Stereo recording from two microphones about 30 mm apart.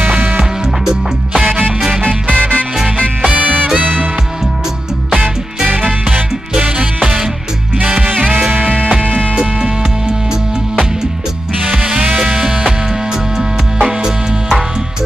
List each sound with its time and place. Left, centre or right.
2.3 s music: left
3.3 s music: right
3.8 s music: right
5.7 s music: right
8.5 s music: right
9.0 s music: left
9.4 s music: right
11.7 s music: right